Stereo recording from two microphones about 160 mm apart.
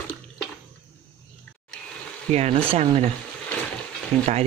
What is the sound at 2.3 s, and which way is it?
Speech, 40° right (ahead or behind).